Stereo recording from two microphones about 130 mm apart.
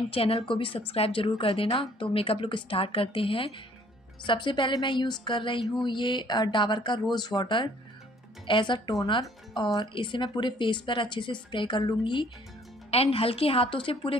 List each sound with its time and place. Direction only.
0.1 s speech: 45° left (ahead or behind)
12.9 s speech: 50° left (ahead or behind)